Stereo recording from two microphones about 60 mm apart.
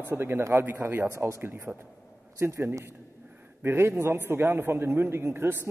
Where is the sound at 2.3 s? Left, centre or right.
Right.